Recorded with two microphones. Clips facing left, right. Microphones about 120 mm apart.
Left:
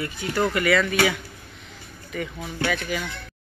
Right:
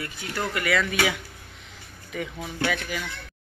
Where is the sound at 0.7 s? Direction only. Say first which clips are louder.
Left 1 dB; 10° right (ahead or behind).